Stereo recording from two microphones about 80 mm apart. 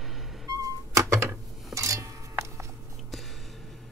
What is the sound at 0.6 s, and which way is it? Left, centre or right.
Cat, right.